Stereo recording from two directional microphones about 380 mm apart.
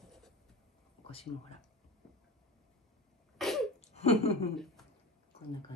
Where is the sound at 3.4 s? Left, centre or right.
Centre.